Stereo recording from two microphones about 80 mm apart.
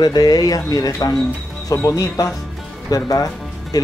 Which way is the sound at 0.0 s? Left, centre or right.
Left.